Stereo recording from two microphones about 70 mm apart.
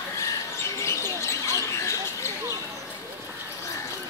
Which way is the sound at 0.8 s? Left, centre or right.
Left.